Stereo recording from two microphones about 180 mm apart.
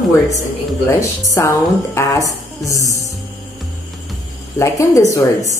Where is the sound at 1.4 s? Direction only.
15° left (ahead or behind).